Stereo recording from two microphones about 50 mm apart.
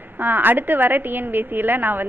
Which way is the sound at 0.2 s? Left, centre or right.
Right.